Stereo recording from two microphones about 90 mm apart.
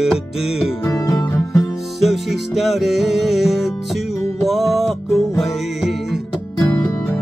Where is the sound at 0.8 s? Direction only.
30° left (ahead or behind).